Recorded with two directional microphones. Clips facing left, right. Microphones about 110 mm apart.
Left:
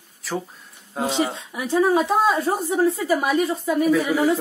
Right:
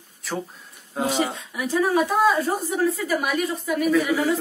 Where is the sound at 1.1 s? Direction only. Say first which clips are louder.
Left 1 dB; 25° left (ahead or behind).